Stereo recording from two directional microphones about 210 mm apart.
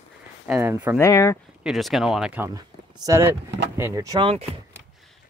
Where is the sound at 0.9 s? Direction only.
15° left (ahead or behind).